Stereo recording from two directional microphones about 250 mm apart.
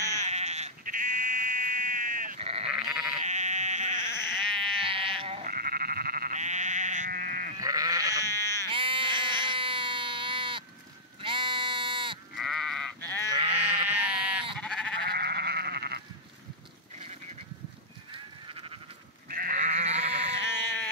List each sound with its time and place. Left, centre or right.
0.1 s sheep: right
4.2 s sheep: centre
4.7 s a sound: right
5.5 s sheep: right
7.6 s sheep: centre
8.6 s a sound: right
11.1 s sheep: centre
12.4 s sheep: centre
13.5 s sheep: centre
15.0 s sheep: right
19.2 s sheep: right
20.5 s a sound: centre